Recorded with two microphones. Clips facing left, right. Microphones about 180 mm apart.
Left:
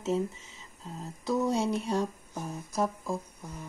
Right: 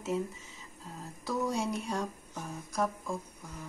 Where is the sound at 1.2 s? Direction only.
25° left (ahead or behind).